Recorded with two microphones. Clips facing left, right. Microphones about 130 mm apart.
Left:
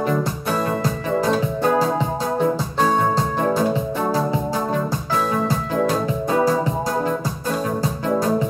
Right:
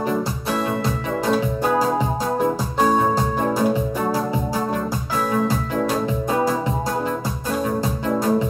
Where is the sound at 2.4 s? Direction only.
5° right (ahead or behind).